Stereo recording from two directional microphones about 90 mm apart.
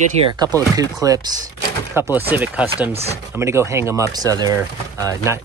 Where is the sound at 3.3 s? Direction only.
30° right (ahead or behind).